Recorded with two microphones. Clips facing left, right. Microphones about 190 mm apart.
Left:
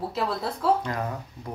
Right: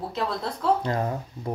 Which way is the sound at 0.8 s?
30° right (ahead or behind).